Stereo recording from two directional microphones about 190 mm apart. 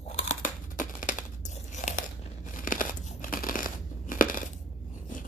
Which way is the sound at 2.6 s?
45° left (ahead or behind).